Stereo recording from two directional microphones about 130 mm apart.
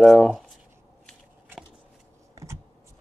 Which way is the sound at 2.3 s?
25° right (ahead or behind).